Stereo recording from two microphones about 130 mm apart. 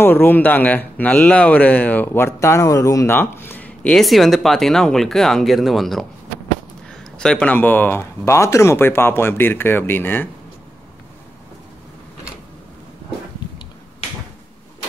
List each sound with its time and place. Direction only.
0.0 s speech: 15° left (ahead or behind)